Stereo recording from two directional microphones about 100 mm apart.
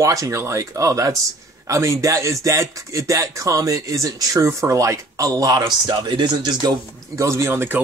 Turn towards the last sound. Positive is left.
turn(degrees=-20)  # may be behind; listen again after turning